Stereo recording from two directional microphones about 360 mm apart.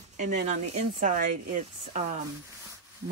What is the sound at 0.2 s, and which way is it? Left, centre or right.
Speech, right.